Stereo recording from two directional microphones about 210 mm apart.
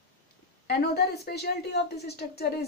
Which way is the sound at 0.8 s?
50° left (ahead or behind).